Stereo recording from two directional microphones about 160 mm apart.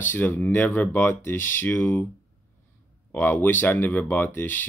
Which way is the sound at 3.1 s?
10° left (ahead or behind).